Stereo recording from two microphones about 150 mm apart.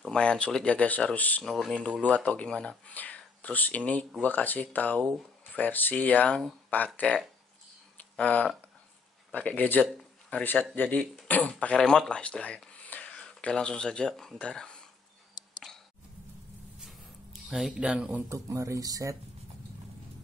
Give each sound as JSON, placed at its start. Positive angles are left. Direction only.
{"t": 0.0, "sound": "speech", "side_deg": 5}
{"t": 16.8, "sound": "a sound", "side_deg": 0}
{"t": 18.3, "sound": "speech", "side_deg": -20}